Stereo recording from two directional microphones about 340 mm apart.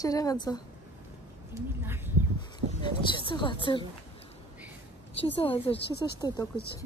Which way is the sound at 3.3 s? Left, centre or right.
Centre.